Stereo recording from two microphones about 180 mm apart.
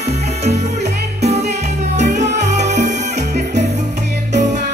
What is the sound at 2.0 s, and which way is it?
Salsa music, 40° right (ahead or behind).